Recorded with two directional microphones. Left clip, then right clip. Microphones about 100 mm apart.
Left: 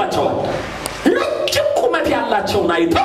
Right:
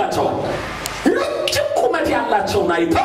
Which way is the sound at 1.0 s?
15° left (ahead or behind).